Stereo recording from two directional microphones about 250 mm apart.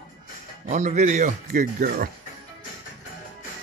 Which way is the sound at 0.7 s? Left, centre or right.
Right.